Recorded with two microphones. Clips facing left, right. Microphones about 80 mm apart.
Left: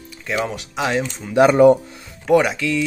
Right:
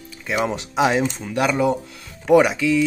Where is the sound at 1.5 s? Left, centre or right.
Left.